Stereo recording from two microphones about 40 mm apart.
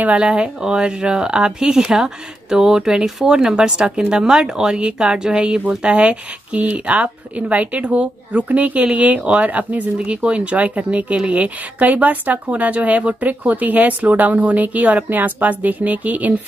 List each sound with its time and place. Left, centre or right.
0.0 s speech: right
0.3 s a woman's voice: right